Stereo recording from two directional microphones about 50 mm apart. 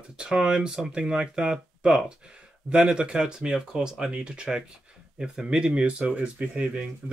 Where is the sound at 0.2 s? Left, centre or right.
Centre.